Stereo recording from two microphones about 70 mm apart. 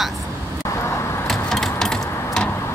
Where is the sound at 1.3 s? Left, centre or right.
Centre.